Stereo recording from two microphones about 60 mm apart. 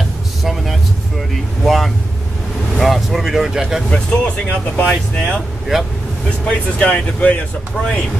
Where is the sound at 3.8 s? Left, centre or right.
Left.